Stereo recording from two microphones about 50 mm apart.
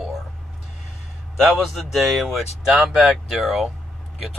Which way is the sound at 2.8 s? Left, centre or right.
Right.